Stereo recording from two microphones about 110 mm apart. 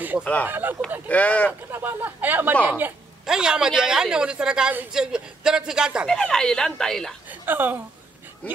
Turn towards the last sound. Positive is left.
turn(degrees=-20)  # may be behind; listen again after turning